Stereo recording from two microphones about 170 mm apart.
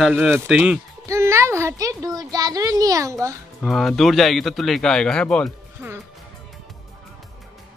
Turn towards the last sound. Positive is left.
turn(degrees=-10)  # may be behind; listen again after turning